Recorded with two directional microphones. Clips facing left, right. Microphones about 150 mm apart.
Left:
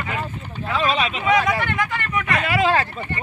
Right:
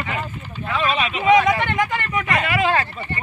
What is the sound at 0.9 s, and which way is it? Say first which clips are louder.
Speech: left 1 dB; 35° left (ahead or behind).